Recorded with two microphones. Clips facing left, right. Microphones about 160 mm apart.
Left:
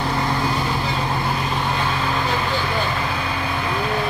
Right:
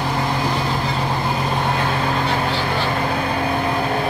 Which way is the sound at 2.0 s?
45° right (ahead or behind).